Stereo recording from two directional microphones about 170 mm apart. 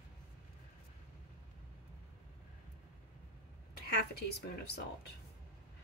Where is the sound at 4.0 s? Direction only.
70° left (ahead or behind).